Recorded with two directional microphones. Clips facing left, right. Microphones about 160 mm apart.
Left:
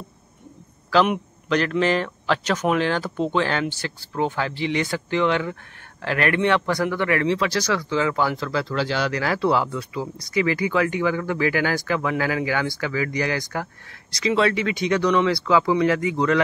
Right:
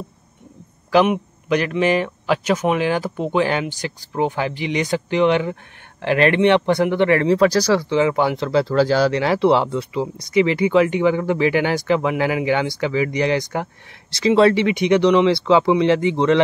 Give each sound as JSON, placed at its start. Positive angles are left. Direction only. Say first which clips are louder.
{"t": 1.0, "sound": "speech", "louder": "right 4 dB", "side_deg": -10}
{"t": 7.9, "sound": "speech", "louder": "right 5 dB", "side_deg": -20}
{"t": 8.7, "sound": "speech", "louder": "right 9 dB", "side_deg": -40}
{"t": 9.1, "sound": "speech", "louder": "right 5 dB", "side_deg": -25}
{"t": 14.1, "sound": "speech", "louder": "right 6 dB", "side_deg": -35}